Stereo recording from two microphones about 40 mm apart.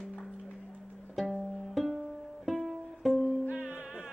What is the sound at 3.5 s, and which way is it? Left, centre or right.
Music, right.